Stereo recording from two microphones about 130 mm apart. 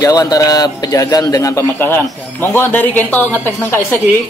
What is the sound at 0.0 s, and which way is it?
A man's voice, 30° left (ahead or behind).